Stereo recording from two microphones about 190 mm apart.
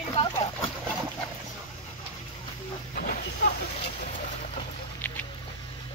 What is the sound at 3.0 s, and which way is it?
Speech, 45° left (ahead or behind).